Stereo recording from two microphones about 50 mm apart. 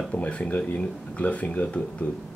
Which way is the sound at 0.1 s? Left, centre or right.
Left.